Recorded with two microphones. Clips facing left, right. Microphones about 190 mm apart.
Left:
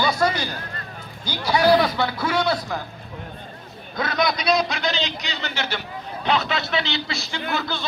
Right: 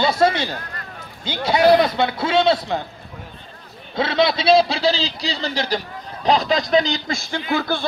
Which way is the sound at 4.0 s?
25° right (ahead or behind).